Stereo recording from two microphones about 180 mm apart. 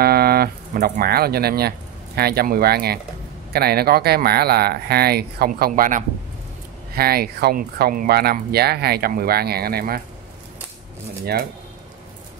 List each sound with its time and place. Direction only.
0.0 s speech: 60° right (ahead or behind)